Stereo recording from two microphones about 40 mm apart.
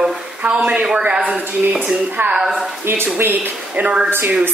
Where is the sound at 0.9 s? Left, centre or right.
Centre.